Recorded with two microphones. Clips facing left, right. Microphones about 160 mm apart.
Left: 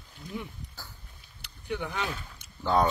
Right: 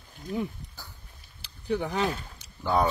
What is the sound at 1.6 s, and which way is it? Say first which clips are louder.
Speech: right 5 dB; 35° right (ahead or behind).